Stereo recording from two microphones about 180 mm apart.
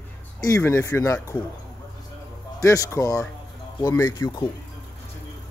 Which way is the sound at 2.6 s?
15° left (ahead or behind).